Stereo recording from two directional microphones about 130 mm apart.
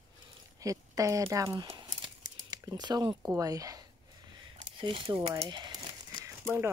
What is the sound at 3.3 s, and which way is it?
Speech, 25° right (ahead or behind).